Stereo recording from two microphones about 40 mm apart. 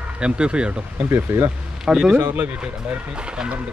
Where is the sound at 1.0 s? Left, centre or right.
Right.